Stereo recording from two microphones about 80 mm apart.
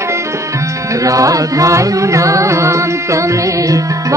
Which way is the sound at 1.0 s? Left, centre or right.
Right.